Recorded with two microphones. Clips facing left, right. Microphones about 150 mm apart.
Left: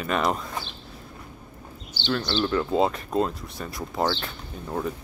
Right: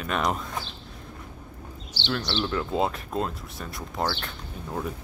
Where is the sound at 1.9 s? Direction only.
90° right.